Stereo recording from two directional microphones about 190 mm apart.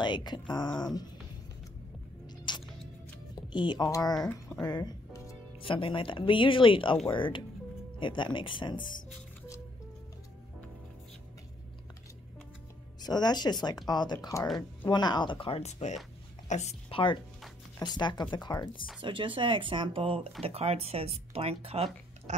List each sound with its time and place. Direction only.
0.0 s speech: 25° left (ahead or behind)
2.2 s music: 25° left (ahead or behind)
3.3 s speech: 25° left (ahead or behind)
4.6 s music: 20° left (ahead or behind)
5.6 s speech: 25° left (ahead or behind)
13.0 s a woman's voice: 20° left (ahead or behind)
18.9 s speech: 25° right (ahead or behind)